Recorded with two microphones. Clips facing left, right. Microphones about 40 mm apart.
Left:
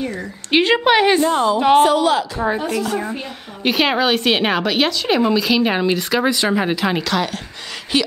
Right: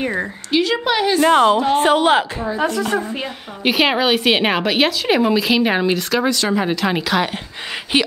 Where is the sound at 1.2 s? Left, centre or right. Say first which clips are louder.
Right 3 dB; right.